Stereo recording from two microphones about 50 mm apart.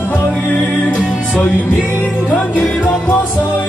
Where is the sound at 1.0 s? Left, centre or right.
Right.